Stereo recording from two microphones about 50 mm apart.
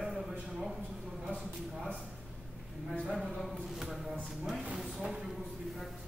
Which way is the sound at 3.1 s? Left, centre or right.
Centre.